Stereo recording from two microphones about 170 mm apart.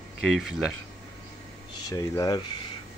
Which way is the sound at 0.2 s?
Centre (ahead or behind).